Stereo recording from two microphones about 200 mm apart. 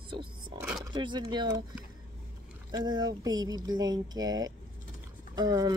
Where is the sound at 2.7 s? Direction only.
20° right (ahead or behind).